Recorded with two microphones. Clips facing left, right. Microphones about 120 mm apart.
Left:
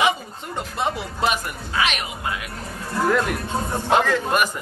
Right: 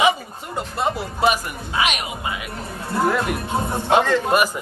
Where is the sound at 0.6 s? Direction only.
Centre (ahead or behind).